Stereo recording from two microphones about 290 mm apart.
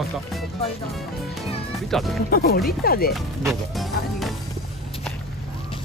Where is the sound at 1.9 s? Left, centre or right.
Centre.